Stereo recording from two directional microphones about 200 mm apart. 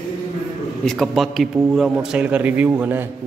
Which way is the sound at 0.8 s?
Centre (ahead or behind).